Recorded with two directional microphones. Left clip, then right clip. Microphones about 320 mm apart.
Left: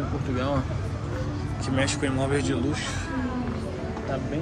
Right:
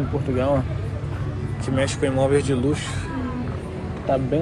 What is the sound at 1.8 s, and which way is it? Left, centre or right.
Speech, centre.